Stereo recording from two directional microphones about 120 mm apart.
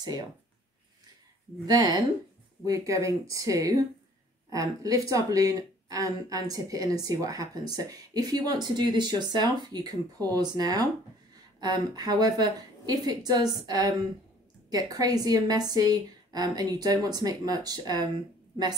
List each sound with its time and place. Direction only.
1.7 s speech: 35° right (ahead or behind)